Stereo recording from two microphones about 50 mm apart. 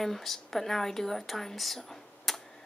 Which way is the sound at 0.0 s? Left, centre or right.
Centre.